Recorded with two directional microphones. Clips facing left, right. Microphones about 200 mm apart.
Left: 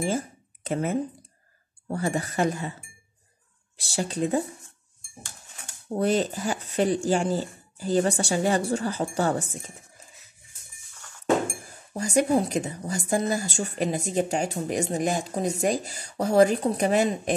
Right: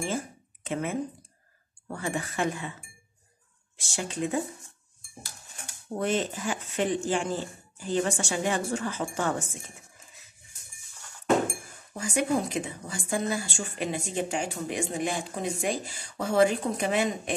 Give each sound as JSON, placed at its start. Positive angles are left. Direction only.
{"t": 0.7, "sound": "a woman's voice", "side_deg": 40}
{"t": 5.9, "sound": "a woman's voice", "side_deg": 35}
{"t": 11.9, "sound": "a woman's voice", "side_deg": 40}